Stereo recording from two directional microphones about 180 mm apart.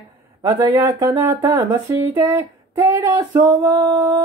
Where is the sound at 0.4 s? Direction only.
20° right (ahead or behind).